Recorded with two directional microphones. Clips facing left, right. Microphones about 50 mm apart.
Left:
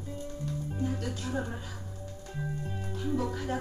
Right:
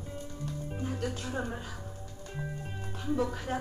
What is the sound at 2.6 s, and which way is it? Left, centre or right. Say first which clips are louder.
Music: left 4 dB; right.